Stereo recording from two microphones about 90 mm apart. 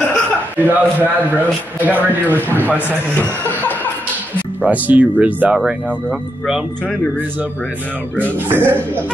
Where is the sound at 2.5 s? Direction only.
20° left (ahead or behind).